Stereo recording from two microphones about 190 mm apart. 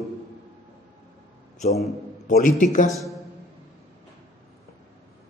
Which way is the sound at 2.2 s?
45° left (ahead or behind).